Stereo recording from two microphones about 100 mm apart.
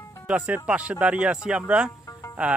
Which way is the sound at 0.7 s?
15° right (ahead or behind).